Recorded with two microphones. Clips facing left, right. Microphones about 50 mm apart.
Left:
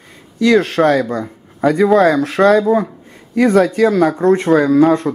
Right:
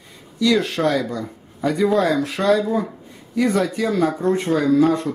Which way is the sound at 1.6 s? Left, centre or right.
Left.